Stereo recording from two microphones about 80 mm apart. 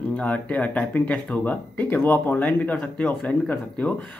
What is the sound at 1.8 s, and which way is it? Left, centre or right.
Speech, left.